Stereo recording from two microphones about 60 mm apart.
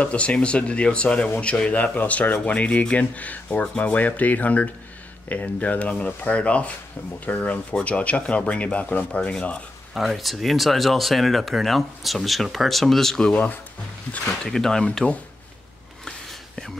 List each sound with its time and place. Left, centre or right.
0.0 s speech: left
9.9 s speech: centre
13.3 s speech: left
14.2 s speech: centre
16.1 s a sound: centre